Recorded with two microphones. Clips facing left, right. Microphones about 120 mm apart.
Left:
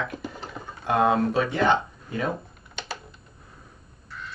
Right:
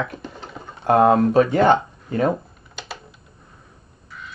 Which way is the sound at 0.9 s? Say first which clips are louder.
Right 7 dB; 45° right (ahead or behind).